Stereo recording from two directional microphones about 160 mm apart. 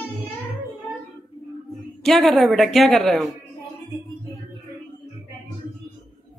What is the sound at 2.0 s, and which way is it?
A woman's voice, centre (ahead or behind).